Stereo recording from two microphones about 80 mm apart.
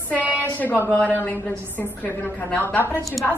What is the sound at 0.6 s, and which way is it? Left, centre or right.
A woman's voice, left.